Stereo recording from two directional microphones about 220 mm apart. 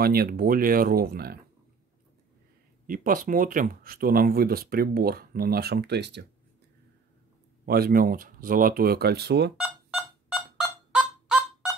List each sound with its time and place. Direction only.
0.0 s speech: 45° right (ahead or behind)
2.9 s speech: 40° right (ahead or behind)
7.6 s speech: 45° right (ahead or behind)
9.6 s music: 5° right (ahead or behind)
10.9 s fowl: 5° right (ahead or behind)